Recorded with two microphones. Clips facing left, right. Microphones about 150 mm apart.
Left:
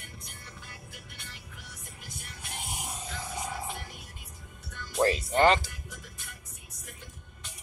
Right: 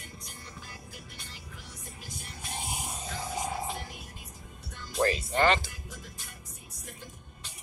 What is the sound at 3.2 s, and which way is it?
Music, 30° right (ahead or behind).